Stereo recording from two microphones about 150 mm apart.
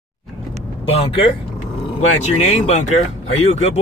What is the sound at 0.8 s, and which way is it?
Speech, 35° left (ahead or behind).